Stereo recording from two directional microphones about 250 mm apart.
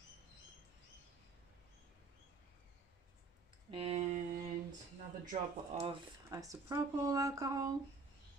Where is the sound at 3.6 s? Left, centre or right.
Right.